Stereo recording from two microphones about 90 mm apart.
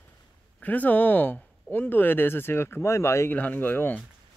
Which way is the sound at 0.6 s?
20° left (ahead or behind).